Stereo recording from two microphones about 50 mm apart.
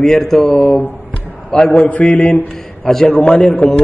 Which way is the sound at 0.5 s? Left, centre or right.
Left.